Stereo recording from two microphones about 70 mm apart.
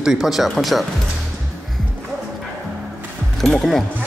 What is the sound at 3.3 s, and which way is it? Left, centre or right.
Speech, centre.